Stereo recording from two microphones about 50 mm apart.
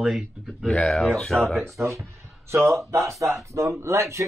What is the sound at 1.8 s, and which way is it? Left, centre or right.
Speech, right.